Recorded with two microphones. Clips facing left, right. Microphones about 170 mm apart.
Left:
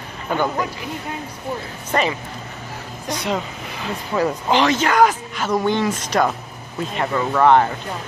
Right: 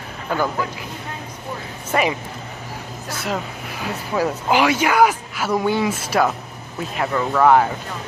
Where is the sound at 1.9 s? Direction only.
5° right (ahead or behind).